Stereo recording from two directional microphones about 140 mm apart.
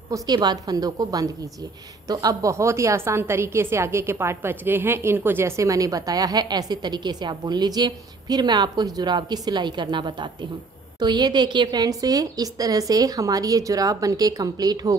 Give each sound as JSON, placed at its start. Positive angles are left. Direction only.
{"t": 0.1, "sound": "a woman's voice", "side_deg": -30}